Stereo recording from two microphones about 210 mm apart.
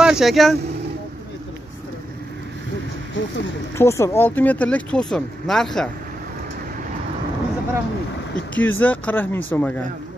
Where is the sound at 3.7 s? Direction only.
15° left (ahead or behind).